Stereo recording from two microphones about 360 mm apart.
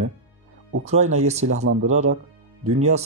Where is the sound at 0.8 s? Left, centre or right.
Centre.